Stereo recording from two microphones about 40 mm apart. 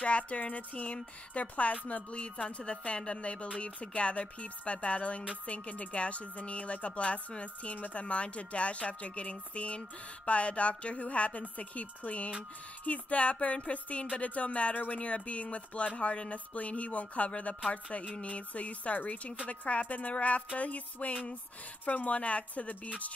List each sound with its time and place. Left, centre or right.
0.0 s a woman's voice: left